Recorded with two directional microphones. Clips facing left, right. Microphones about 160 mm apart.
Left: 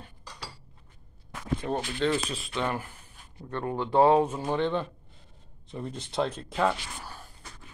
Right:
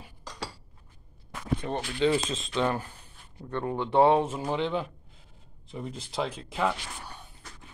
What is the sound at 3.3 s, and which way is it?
Speech, 15° right (ahead or behind).